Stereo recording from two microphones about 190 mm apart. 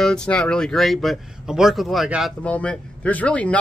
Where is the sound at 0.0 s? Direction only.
5° left (ahead or behind).